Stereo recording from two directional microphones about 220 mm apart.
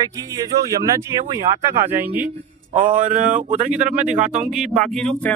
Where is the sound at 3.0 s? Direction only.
35° right (ahead or behind).